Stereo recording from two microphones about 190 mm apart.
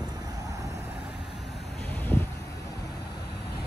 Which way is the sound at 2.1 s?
10° left (ahead or behind).